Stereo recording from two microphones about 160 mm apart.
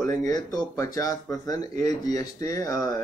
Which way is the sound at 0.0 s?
20° left (ahead or behind).